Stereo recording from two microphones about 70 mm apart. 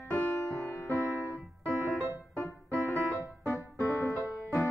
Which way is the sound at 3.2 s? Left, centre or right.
Left.